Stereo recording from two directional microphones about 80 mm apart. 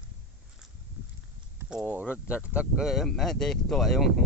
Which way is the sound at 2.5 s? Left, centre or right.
Centre.